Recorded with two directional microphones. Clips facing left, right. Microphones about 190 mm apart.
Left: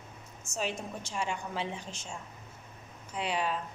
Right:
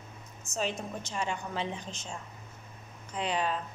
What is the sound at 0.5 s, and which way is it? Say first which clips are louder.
A woman's voice: right 2 dB; 10° left (ahead or behind).